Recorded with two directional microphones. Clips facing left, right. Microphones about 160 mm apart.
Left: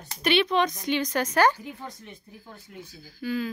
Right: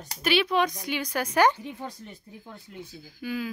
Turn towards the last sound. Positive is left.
turn(degrees=-10)  # may be behind; listen again after turning